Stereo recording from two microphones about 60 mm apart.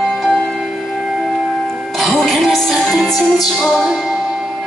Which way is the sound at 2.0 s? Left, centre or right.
Centre.